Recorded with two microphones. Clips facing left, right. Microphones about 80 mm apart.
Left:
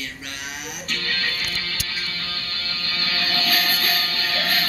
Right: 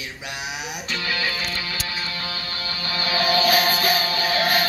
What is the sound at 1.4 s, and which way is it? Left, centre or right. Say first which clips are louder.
Music: right 2 dB; right.